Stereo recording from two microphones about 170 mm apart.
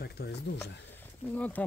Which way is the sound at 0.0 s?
70° left (ahead or behind).